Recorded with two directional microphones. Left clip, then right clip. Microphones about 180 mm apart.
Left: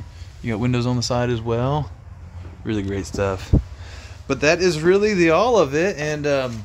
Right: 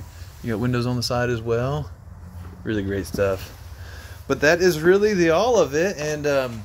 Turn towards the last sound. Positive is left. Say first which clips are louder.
# left 1 dB
turn(degrees=20)  # may be behind; listen again after turning